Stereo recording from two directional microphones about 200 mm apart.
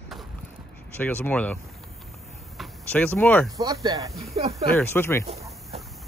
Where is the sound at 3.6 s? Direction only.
15° right (ahead or behind).